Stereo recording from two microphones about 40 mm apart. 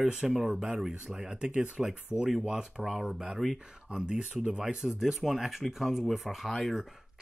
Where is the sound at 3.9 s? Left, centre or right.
Right.